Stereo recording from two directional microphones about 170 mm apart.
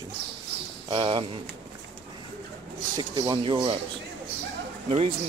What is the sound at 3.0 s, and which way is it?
Speech, 25° right (ahead or behind).